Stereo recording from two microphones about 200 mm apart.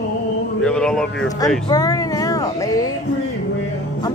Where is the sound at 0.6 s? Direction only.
5° left (ahead or behind).